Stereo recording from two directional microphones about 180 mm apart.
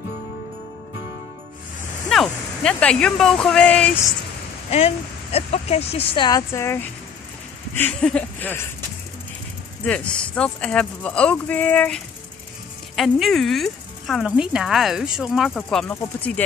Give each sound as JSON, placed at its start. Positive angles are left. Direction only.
{"t": 2.0, "sound": "speech", "side_deg": 0}
{"t": 4.6, "sound": "speech", "side_deg": 35}
{"t": 9.8, "sound": "speech", "side_deg": 5}